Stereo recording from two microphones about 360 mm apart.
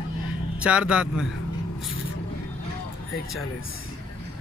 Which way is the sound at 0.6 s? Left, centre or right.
Centre.